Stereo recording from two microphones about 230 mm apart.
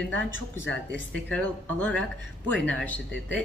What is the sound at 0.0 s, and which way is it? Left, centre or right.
Speech, centre.